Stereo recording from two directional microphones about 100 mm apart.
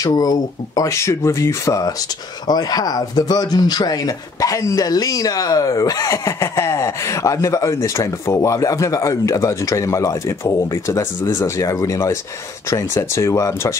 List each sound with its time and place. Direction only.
0.0 s speech: 40° left (ahead or behind)